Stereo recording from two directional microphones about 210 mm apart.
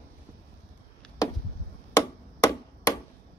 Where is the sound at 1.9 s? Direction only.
15° left (ahead or behind).